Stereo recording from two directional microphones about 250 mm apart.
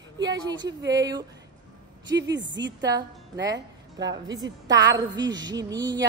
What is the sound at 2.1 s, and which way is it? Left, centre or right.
A woman's voice, right.